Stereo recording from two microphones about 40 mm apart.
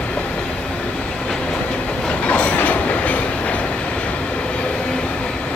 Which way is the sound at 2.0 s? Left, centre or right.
Left.